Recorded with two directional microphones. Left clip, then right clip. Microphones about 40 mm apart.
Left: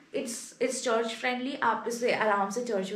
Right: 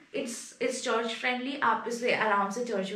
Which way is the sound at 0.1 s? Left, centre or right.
Left.